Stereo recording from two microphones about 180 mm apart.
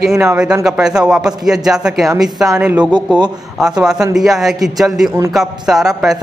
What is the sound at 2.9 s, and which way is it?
Speech, 25° right (ahead or behind).